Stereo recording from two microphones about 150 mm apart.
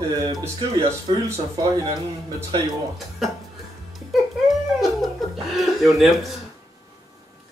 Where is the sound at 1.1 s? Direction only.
40° right (ahead or behind).